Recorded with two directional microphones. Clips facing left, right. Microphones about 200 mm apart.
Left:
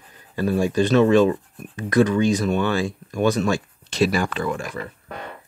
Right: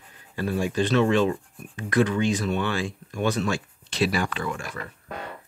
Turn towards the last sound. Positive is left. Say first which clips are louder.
# left 5 dB
turn(degrees=35)  # may be behind; listen again after turning